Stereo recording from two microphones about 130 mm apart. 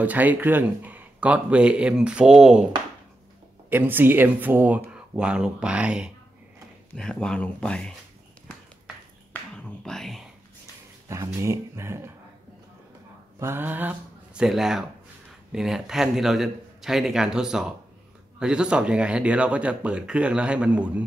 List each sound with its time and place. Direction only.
0.0 s speech: 10° right (ahead or behind)
3.7 s speech: 15° right (ahead or behind)
6.9 s speech: 5° left (ahead or behind)
9.3 s whispering: 10° left (ahead or behind)
11.1 s a sound: 20° right (ahead or behind)
11.4 s speech: 20° right (ahead or behind)
13.4 s a man's voice: 15° right (ahead or behind)